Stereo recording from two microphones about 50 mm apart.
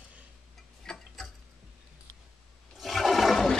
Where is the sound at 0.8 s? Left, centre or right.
Centre.